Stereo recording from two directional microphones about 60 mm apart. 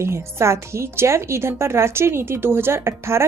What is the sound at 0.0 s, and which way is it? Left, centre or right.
A woman's voice, right.